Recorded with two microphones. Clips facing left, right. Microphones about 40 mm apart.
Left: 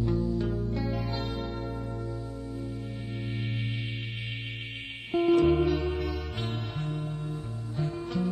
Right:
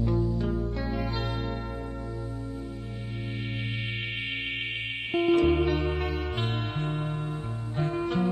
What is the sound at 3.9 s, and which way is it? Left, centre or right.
Music, right.